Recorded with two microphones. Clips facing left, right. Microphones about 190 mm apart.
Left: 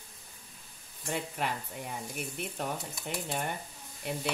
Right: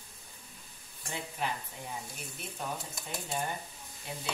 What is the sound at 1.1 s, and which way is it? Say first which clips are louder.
Speech: left 3 dB; 65° left (ahead or behind).